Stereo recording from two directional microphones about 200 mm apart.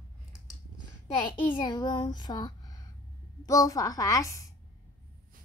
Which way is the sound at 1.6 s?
20° left (ahead or behind).